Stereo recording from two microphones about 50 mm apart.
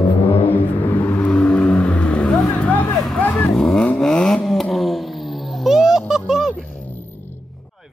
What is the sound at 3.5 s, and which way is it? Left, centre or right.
Vehicle, centre.